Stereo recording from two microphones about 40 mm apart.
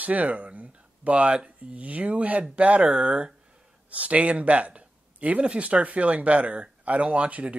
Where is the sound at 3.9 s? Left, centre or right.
Right.